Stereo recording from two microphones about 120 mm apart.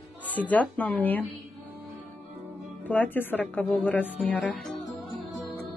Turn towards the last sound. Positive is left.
turn(degrees=15)  # may be behind; listen again after turning